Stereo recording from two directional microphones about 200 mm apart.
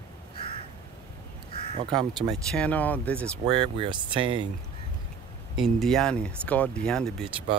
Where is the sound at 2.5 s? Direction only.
5° left (ahead or behind).